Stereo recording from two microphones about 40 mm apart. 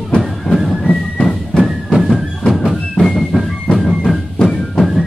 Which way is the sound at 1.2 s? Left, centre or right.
Centre.